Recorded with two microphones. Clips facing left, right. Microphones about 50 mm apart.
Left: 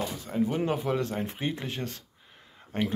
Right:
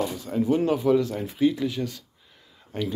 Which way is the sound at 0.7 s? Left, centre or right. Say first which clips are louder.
Right 7 dB; left.